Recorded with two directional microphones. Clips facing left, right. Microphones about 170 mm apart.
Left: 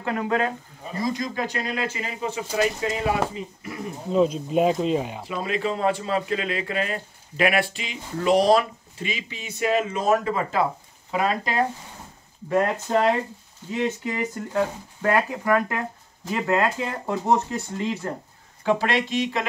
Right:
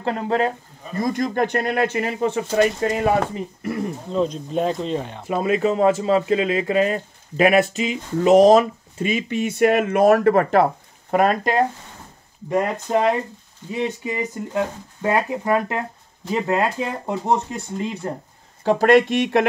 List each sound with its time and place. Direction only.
0.0 s speech: 30° right (ahead or behind)
1.0 s speech: 55° right (ahead or behind)
2.5 s speech: 50° right (ahead or behind)
4.1 s speech: 5° left (ahead or behind)
5.6 s speech: 45° right (ahead or behind)
12.4 s speech: 15° right (ahead or behind)
18.6 s speech: 40° right (ahead or behind); by 19.4 s 60° right (ahead or behind)